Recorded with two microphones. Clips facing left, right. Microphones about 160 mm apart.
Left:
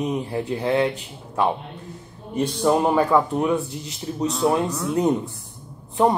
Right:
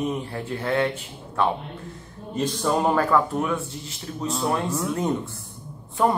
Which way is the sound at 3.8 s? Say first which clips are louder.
Left 3 dB; centre (ahead or behind).